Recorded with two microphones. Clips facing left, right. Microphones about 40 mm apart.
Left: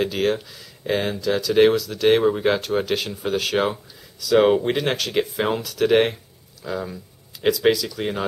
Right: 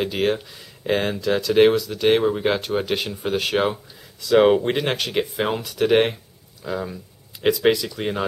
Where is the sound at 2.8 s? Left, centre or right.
Centre.